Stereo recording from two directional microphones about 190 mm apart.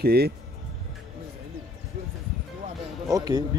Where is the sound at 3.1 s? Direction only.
20° right (ahead or behind).